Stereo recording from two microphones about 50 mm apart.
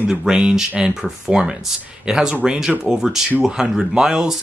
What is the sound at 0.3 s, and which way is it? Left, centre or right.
Speech, centre.